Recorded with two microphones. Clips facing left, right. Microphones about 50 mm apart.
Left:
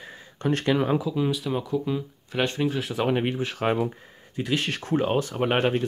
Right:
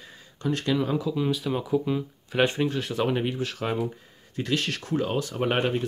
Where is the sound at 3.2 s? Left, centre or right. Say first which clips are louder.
Left 2 dB; left.